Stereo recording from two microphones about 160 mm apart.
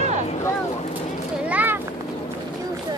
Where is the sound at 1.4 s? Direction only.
10° right (ahead or behind).